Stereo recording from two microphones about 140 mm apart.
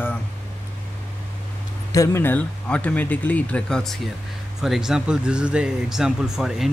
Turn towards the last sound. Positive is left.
turn(degrees=0)  # may be behind; listen again after turning